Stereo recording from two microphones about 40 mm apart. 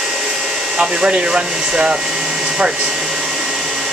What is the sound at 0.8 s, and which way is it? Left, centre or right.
Speech, right.